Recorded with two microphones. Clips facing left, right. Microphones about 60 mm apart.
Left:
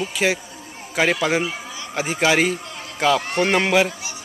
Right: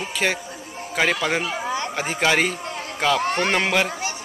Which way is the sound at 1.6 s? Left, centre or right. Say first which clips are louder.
Right 9 dB; right.